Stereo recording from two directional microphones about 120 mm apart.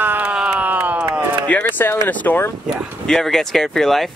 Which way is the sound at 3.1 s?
5° left (ahead or behind).